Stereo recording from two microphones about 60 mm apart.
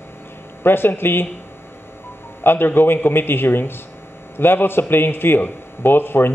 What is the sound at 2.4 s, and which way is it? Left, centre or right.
A man's voice, left.